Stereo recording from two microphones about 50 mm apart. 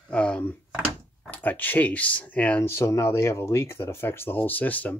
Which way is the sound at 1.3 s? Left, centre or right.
Left.